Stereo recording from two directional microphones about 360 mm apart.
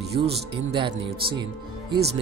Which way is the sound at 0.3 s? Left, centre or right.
Centre.